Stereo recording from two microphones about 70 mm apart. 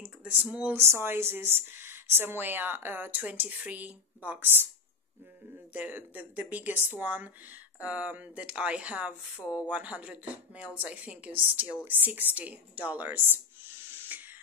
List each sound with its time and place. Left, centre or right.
0.2 s speech: centre
0.7 s speech: right
5.7 s speech: right
14.1 s steam: right